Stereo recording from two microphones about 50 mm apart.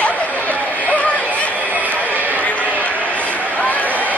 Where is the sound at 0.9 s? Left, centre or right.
Left.